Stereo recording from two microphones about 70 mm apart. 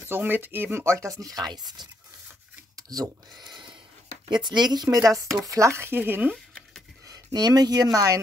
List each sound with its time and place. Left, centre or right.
0.0 s speech: right
1.3 s speech: right
2.7 s speech: right
4.9 s speech: right
5.9 s speech: right
6.3 s a sound: centre
7.1 s speech: right